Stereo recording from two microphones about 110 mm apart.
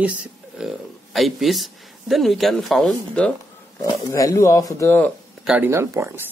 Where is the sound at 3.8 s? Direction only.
35° left (ahead or behind).